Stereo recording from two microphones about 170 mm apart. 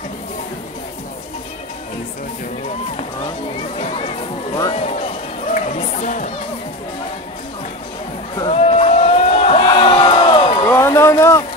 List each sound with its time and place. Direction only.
3.7 s music: 35° left (ahead or behind)
4.7 s run: 40° left (ahead or behind)
8.4 s crowd: 35° left (ahead or behind)
10.7 s a sound: 15° left (ahead or behind)